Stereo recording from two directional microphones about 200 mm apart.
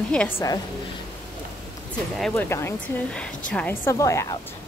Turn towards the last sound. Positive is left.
turn(degrees=15)  # may be behind; listen again after turning